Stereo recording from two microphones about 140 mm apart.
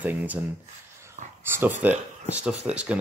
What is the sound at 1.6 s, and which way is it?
Speech, 15° right (ahead or behind).